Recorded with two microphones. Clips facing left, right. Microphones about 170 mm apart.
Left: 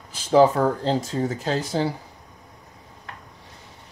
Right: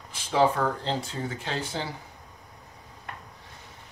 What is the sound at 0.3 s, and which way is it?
Speech, 40° left (ahead or behind).